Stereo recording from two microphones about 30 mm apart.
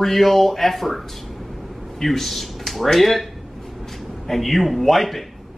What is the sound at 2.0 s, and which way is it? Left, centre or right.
Speech, centre.